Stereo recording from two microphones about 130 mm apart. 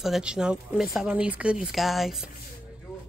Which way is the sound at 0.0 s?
5° right (ahead or behind).